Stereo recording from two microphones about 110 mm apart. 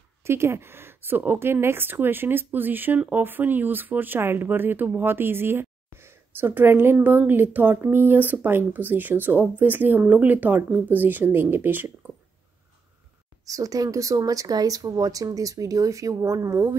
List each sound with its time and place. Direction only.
0.2 s a woman's voice: 25° right (ahead or behind)
13.5 s speech: 30° right (ahead or behind)